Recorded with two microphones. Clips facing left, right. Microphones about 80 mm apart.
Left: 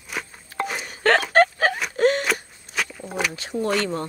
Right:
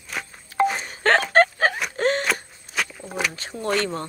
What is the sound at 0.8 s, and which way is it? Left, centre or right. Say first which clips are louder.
Telephone dialing: even; right.